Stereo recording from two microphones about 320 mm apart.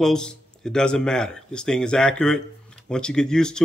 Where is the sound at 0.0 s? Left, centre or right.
Centre.